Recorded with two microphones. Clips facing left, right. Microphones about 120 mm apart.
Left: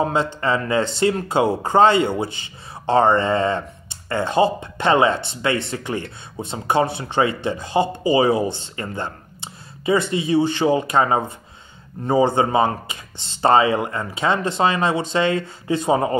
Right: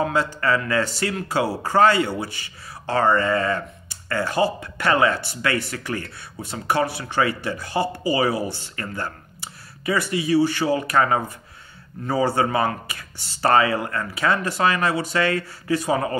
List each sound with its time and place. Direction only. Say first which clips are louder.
0.0 s speech: left 2 dB; 25° left (ahead or behind)